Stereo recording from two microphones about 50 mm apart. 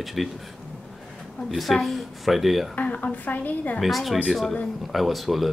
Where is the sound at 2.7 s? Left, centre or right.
Left.